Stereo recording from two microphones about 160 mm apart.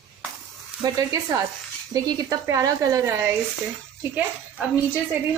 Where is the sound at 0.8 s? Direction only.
25° right (ahead or behind).